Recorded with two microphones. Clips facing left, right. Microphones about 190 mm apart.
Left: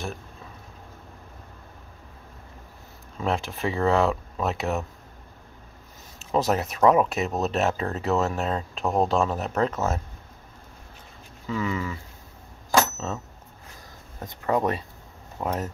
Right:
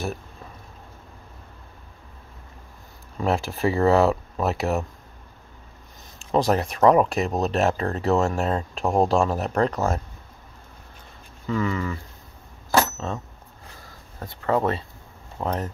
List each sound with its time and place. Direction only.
3.2 s speech: centre (ahead or behind)
6.3 s speech: 5° left (ahead or behind)
11.4 s speech: 10° left (ahead or behind)
12.9 s a sound: 5° left (ahead or behind)
13.8 s speech: 20° left (ahead or behind)